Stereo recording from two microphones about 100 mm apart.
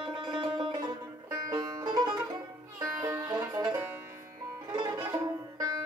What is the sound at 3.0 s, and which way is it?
Music, 30° right (ahead or behind).